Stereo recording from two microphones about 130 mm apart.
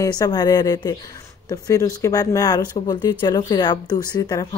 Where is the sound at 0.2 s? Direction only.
30° left (ahead or behind).